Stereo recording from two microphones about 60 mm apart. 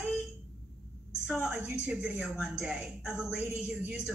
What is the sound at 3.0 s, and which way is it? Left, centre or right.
Speech, centre.